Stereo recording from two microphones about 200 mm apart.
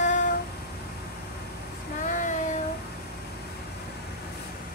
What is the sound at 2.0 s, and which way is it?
Child singing, 40° left (ahead or behind).